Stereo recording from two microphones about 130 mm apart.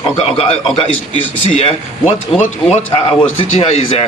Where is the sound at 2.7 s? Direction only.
50° left (ahead or behind).